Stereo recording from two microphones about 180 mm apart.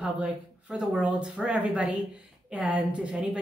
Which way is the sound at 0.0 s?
5° right (ahead or behind).